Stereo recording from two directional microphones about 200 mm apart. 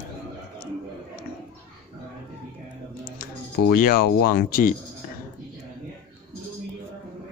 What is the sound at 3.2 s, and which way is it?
Speech, 45° left (ahead or behind).